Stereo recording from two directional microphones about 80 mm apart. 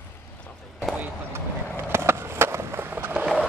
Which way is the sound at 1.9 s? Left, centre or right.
Right.